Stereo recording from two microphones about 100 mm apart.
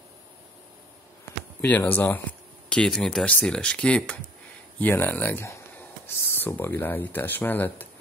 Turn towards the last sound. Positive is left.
turn(degrees=20)  # may be behind; listen again after turning